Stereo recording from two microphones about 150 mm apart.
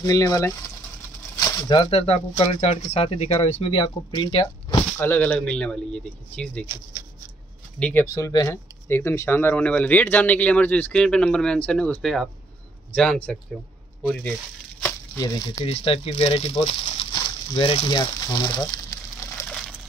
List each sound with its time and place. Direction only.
0.0 s speech: 20° left (ahead or behind)
1.7 s speech: 35° left (ahead or behind)
4.9 s speech: 15° left (ahead or behind)
7.8 s speech: 15° left (ahead or behind)
14.8 s a sound: 20° left (ahead or behind)
15.6 s speech: 40° left (ahead or behind)
18.7 s a sound: 25° left (ahead or behind)